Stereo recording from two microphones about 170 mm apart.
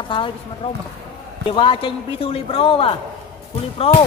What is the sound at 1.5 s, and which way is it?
A man's voice, 30° left (ahead or behind).